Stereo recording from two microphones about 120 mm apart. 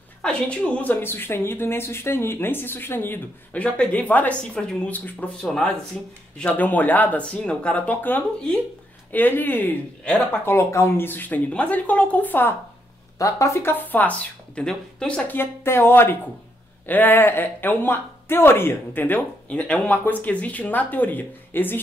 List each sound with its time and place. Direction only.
0.2 s speech: 10° left (ahead or behind)